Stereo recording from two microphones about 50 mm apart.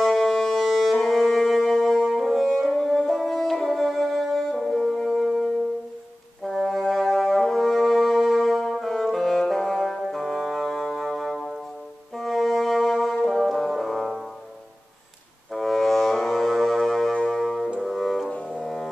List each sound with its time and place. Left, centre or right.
0.0 s music: centre
5.0 s music: centre
6.4 s brass instrument: centre
12.2 s music: centre
15.5 s music: centre
17.3 s brass instrument: centre
17.7 s music: centre
18.3 s music: centre